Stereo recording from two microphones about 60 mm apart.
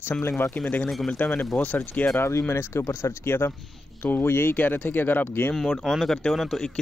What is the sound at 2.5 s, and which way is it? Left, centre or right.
Speech, left.